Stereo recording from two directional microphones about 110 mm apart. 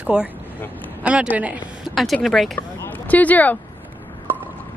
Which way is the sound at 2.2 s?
5° left (ahead or behind).